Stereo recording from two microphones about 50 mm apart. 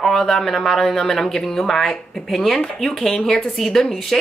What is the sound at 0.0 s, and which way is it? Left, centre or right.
A woman's voice, centre.